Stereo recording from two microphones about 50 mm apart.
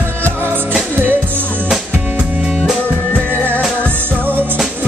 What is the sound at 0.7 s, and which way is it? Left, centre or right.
Music, right.